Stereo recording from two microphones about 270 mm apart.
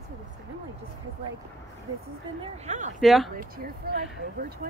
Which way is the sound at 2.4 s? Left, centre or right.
Right.